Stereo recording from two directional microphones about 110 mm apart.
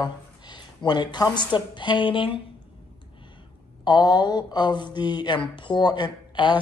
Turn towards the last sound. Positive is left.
turn(degrees=45)  # may be behind; listen again after turning